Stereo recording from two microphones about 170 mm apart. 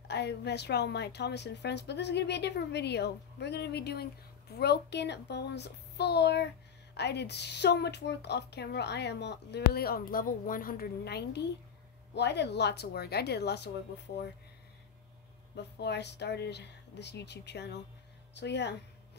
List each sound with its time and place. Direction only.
0.1 s a woman's voice: 85° left
12.1 s a woman's voice: 90° left
15.5 s a woman's voice: 80° left